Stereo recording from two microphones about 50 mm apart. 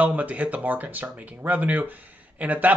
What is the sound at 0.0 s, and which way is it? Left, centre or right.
Speech, right.